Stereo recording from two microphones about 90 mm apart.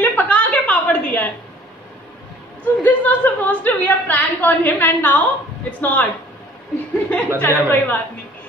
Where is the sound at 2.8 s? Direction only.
20° left (ahead or behind).